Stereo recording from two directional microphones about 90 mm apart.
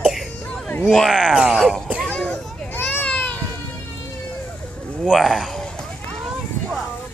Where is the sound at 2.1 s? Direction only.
10° left (ahead or behind).